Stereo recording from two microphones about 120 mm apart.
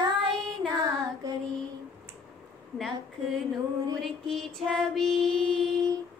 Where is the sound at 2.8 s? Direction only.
5° left (ahead or behind).